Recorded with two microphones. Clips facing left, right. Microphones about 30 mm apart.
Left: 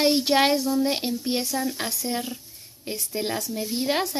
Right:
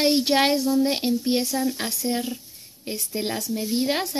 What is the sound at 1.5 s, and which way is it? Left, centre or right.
A woman's voice, centre.